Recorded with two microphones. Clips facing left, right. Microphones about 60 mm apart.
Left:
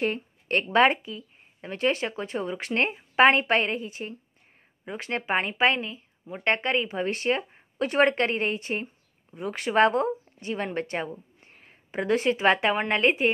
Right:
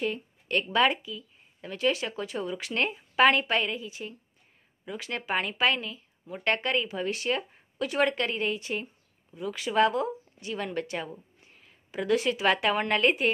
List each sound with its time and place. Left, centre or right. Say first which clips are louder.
0.0 s a woman's voice: left 3 dB; left